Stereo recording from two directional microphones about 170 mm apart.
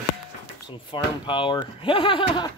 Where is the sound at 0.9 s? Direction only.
30° left (ahead or behind).